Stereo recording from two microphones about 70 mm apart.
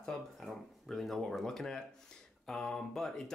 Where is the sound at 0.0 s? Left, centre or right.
Centre.